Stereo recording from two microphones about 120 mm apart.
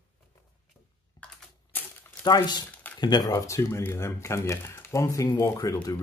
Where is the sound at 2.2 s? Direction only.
35° left (ahead or behind).